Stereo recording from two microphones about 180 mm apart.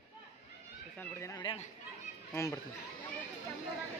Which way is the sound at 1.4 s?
40° left (ahead or behind).